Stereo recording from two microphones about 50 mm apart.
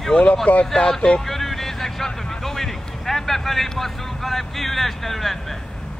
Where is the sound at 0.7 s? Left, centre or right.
Centre.